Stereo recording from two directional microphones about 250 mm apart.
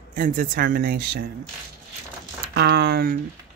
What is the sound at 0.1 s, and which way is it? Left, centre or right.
Speech, right.